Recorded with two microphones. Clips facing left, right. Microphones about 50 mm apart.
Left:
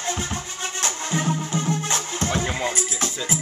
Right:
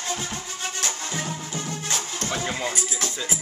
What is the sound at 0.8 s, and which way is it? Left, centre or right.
Music, left.